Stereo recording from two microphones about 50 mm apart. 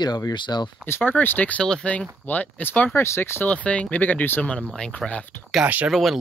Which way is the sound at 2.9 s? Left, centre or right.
Left.